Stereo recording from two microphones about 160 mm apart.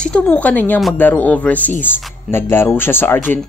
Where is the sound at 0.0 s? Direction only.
5° left (ahead or behind).